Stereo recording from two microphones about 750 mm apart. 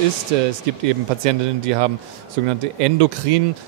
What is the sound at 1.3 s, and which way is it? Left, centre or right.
A man's voice, right.